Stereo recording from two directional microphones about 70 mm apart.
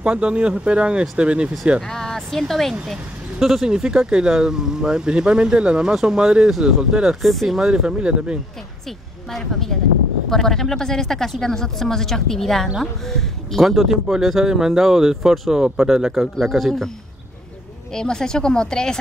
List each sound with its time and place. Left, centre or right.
0.0 s speech: centre
1.8 s speech: centre
9.3 s speech: centre
17.9 s speech: centre